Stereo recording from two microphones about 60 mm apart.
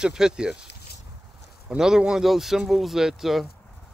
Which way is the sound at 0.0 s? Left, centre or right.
Centre.